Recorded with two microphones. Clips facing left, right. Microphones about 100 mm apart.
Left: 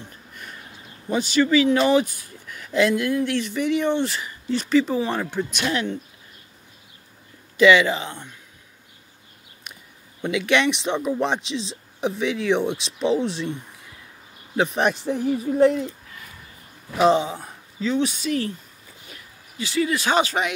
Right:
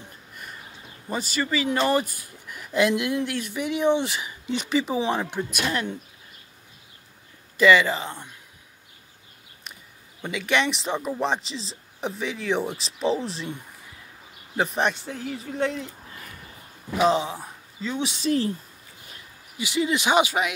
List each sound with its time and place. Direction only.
1.1 s speech: centre (ahead or behind); by 3.3 s 20° right (ahead or behind)
3.3 s speech: 5° right (ahead or behind)
7.5 s speech: centre (ahead or behind)
10.2 s speech: centre (ahead or behind)
14.6 s speech: 5° left (ahead or behind)
17.0 s speech: centre (ahead or behind)
18.2 s speech: 30° right (ahead or behind)
19.6 s speech: 20° right (ahead or behind)